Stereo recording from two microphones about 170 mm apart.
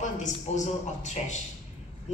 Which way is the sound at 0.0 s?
45° left (ahead or behind).